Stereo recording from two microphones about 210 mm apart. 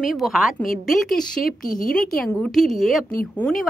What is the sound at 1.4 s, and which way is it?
Speech, 40° left (ahead or behind).